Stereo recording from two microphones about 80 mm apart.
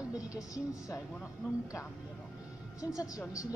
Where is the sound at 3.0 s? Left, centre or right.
Left.